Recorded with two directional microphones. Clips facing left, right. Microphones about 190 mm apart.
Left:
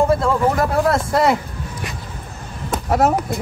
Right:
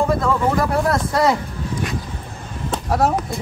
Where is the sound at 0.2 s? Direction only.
25° left (ahead or behind).